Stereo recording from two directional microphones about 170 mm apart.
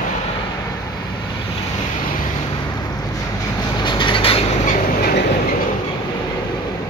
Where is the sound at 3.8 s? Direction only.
30° left (ahead or behind).